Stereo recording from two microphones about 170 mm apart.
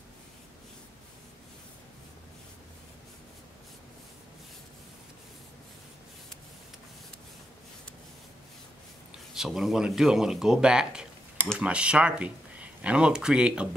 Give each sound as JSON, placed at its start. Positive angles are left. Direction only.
{"t": 9.3, "sound": "speech", "side_deg": 0}